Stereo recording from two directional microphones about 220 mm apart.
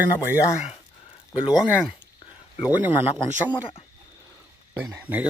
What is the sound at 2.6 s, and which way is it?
Speech, 10° right (ahead or behind).